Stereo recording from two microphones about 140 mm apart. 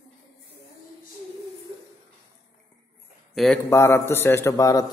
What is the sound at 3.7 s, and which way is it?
A man's voice, 20° left (ahead or behind).